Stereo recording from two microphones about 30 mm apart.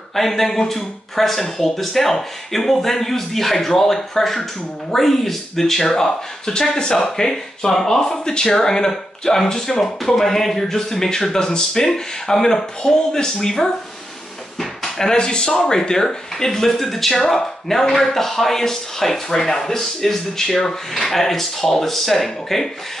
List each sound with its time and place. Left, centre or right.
0.1 s speech: centre
14.6 s drawer open or close: centre
15.1 s speech: left; by 22.7 s centre